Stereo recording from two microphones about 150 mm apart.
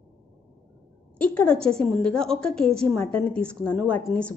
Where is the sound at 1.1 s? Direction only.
10° left (ahead or behind).